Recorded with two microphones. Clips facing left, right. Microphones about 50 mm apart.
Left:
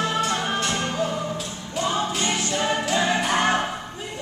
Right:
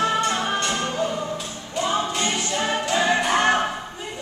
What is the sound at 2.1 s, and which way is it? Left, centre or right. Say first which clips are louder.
Music: even; centre.